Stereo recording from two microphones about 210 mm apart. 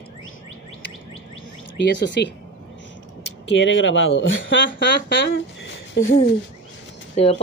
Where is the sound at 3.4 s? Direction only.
65° left (ahead or behind).